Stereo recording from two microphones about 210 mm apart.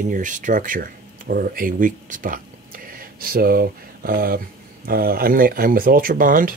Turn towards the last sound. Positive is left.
turn(degrees=-40)  # may be behind; listen again after turning